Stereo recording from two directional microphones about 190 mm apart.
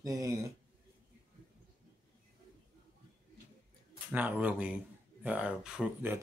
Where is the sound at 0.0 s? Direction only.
15° right (ahead or behind).